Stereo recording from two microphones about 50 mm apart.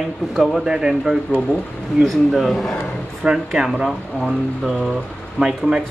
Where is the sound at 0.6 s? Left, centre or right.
Centre.